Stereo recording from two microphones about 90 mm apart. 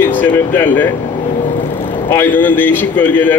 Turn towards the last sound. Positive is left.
turn(degrees=20)  # may be behind; listen again after turning